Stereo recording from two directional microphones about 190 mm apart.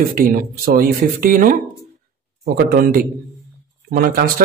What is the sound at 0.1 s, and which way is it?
Speech, 50° right (ahead or behind).